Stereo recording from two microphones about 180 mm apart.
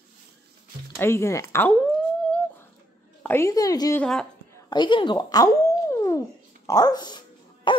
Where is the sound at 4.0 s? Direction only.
5° left (ahead or behind).